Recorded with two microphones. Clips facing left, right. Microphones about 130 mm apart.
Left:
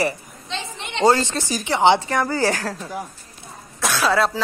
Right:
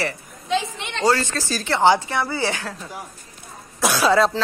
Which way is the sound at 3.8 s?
Centre (ahead or behind).